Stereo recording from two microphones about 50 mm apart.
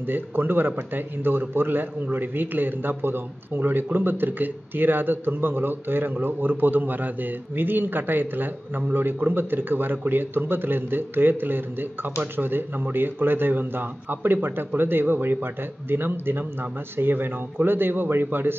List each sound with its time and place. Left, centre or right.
0.0 s a man's voice: right